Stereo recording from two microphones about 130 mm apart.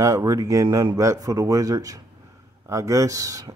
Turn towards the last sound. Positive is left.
turn(degrees=-25)  # may be behind; listen again after turning